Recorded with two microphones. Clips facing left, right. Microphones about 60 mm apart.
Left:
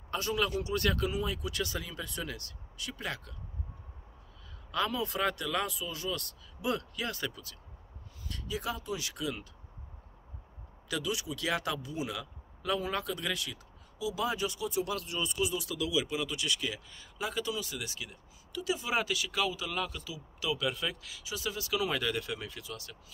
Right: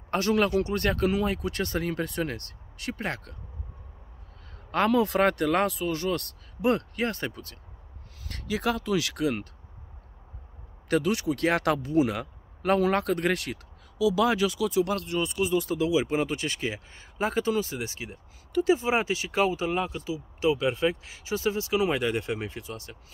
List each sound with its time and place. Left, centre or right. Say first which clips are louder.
0.1 s speech: right 8 dB; right
1.0 s speech: right 7 dB; right
4.6 s speech: right 9 dB; right
8.3 s speech: right 8 dB; right
10.9 s speech: right 10 dB; right
14.1 s speech: right 9 dB; right
14.9 s speech: right 7 dB; right